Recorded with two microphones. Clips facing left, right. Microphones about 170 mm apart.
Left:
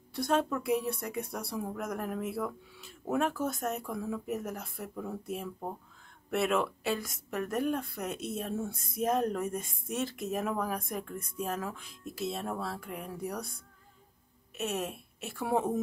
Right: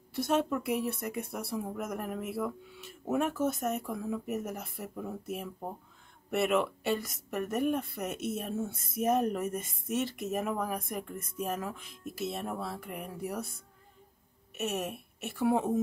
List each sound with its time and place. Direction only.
0.1 s speech: 5° right (ahead or behind)
14.6 s speech: centre (ahead or behind)